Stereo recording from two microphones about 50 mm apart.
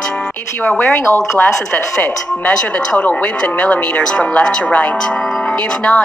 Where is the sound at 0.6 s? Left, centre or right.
Left.